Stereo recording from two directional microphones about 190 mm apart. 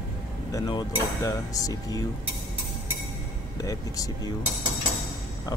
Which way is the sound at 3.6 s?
20° left (ahead or behind).